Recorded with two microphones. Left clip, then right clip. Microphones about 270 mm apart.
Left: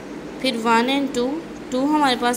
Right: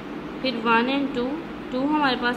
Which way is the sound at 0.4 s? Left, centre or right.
Left.